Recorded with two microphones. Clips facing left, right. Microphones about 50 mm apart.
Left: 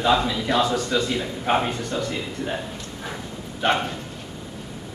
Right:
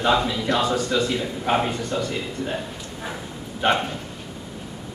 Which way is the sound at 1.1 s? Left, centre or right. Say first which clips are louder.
Even; centre.